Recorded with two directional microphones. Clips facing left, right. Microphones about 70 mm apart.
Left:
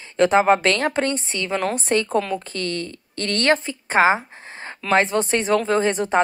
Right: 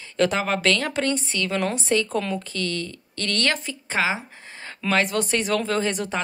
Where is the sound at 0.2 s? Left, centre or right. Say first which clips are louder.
Left 6 dB; left.